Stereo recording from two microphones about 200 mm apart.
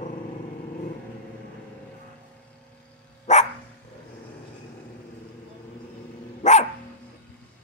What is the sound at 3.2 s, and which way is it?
Dog, 35° left (ahead or behind).